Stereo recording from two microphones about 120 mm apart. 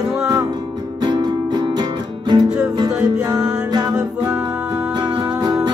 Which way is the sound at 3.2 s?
35° right (ahead or behind).